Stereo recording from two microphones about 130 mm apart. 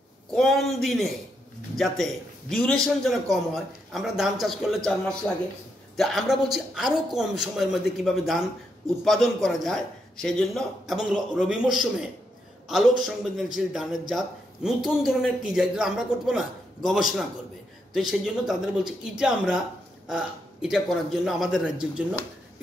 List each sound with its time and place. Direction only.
0.3 s a man's voice: centre (ahead or behind)